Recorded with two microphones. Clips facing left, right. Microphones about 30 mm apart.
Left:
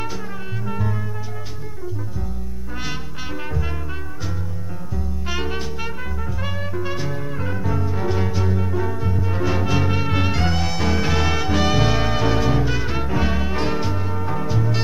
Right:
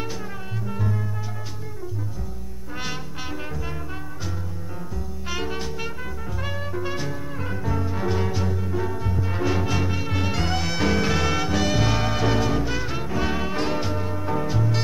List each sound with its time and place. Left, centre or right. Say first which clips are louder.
4.9 s music: left 4 dB; centre
6.4 s trumpet: left 1 dB; centre
7.1 s music: left 3 dB; centre
8.5 s music: left 4 dB; centre
8.7 s music: left 3 dB; centre